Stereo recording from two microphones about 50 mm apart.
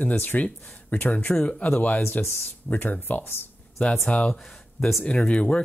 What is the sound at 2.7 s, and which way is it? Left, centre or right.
Speech, left.